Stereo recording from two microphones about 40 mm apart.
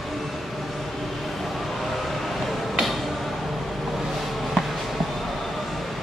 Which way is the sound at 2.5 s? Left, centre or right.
Centre.